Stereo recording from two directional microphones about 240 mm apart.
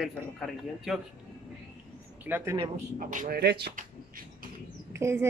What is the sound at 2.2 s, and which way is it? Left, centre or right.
Speech, centre.